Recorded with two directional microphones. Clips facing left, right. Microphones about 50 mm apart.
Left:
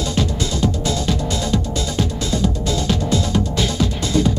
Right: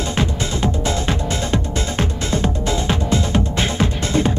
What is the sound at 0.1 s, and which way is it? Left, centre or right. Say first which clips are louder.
Music: even; right.